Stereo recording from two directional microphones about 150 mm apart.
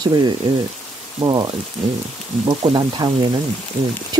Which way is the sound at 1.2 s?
30° right (ahead or behind).